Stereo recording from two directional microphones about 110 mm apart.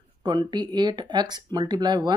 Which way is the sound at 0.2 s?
45° right (ahead or behind).